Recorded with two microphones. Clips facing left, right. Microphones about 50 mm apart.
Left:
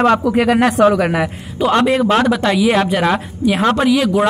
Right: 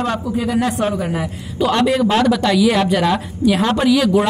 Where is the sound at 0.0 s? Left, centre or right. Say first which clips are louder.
Left 7 dB; left.